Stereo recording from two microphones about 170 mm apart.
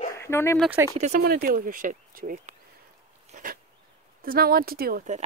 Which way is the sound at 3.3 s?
55° right (ahead or behind).